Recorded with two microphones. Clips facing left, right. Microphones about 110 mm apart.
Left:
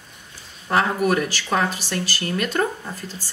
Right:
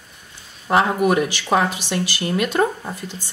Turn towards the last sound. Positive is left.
turn(degrees=-20)  # may be behind; listen again after turning